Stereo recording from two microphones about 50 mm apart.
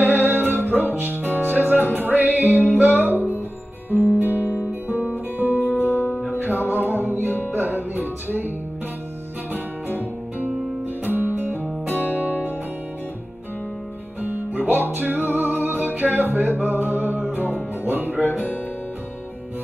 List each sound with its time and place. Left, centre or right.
0.0 s music: right
4.4 s guitar: left
4.8 s music: right
5.8 s music: left
6.2 s music: right
11.1 s music: right
14.2 s music: right